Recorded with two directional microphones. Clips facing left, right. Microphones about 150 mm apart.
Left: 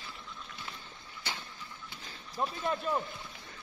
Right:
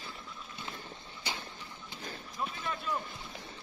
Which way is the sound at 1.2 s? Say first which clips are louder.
Right 1 dB; 15° right (ahead or behind).